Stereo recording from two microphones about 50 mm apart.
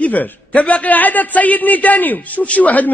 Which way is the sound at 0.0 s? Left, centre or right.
Left.